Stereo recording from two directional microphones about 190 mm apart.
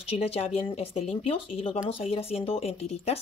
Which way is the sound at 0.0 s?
30° left (ahead or behind).